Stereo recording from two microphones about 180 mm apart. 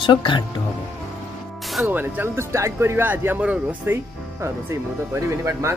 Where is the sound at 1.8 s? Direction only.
10° right (ahead or behind).